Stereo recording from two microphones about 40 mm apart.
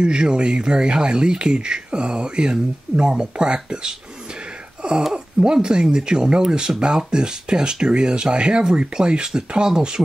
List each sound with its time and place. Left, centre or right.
0.0 s speech: right
5.1 s speech: centre